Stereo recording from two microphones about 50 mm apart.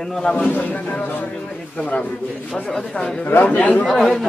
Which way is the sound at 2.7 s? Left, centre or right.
Centre.